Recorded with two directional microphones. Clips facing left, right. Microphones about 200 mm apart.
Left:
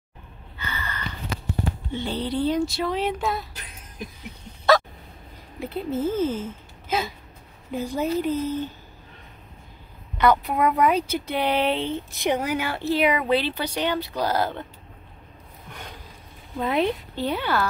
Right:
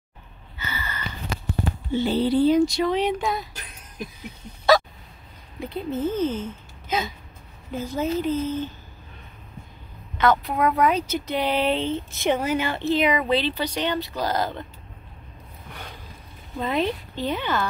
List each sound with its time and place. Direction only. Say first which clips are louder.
0.6 s gasp: even; 10° right (ahead or behind)
1.9 s speech: right 9 dB; 5° right (ahead or behind)
5.6 s a woman's voice: even; 5° left (ahead or behind)
10.2 s speech: left 1 dB; 10° left (ahead or behind)
16.5 s speech: left 1 dB; 10° left (ahead or behind)